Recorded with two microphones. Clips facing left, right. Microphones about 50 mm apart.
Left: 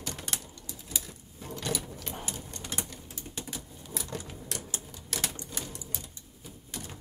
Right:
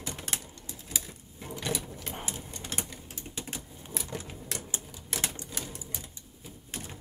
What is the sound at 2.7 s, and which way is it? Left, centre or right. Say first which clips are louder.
Printer: even; right.